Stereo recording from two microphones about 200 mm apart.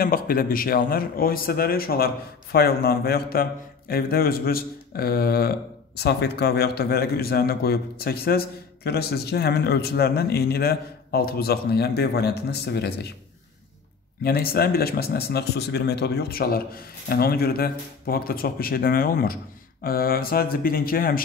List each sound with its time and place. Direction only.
0.0 s a man's voice: 45° left (ahead or behind)
14.2 s a man's voice: 50° left (ahead or behind)